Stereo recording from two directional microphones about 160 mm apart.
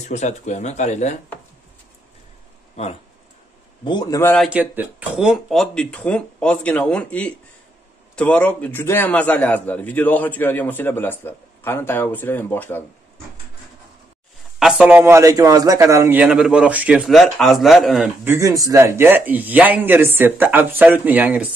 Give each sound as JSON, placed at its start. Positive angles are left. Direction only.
{"t": 0.1, "sound": "speech", "side_deg": 45}
{"t": 2.7, "sound": "speech", "side_deg": 40}
{"t": 3.8, "sound": "a man's voice", "side_deg": 25}
{"t": 4.4, "sound": "a man's voice", "side_deg": -10}
{"t": 14.6, "sound": "a man's voice", "side_deg": -5}
{"t": 18.2, "sound": "a man's voice", "side_deg": -15}